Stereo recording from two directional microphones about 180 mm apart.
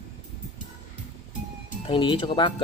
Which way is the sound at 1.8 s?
25° left (ahead or behind).